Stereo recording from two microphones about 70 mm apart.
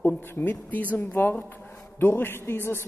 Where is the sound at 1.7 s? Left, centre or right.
Left.